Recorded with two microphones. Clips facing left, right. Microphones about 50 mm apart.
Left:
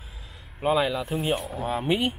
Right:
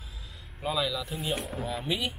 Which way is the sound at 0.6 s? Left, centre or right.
Left.